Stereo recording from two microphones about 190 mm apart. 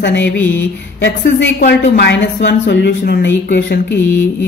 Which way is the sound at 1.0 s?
60° left (ahead or behind).